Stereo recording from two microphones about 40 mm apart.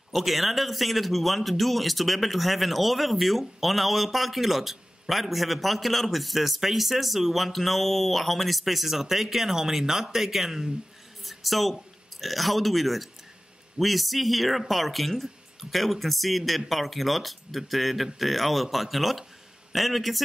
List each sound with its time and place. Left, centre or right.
0.1 s a man's voice: centre